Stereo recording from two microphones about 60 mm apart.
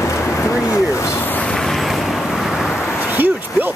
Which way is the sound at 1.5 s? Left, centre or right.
Centre.